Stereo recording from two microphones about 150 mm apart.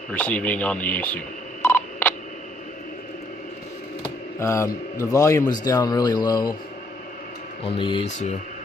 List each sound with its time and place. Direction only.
0.1 s telephone dialing: 10° left (ahead or behind)
4.4 s a man's voice: 20° left (ahead or behind)
7.6 s speech: 35° left (ahead or behind)